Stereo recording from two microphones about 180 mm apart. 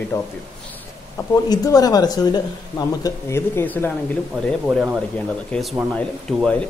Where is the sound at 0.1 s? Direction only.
15° left (ahead or behind).